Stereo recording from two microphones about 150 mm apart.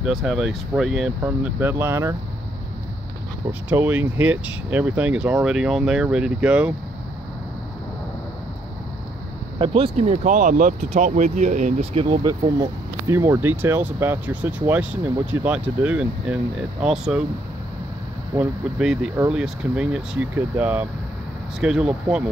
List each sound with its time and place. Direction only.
0.0 s speech: centre (ahead or behind); by 2.1 s 20° right (ahead or behind)
3.6 s speech: 10° right (ahead or behind)
9.6 s speech: 40° right (ahead or behind)
10.2 s speech: 60° right (ahead or behind); by 17.2 s 5° right (ahead or behind)
18.3 s speech: 5° right (ahead or behind)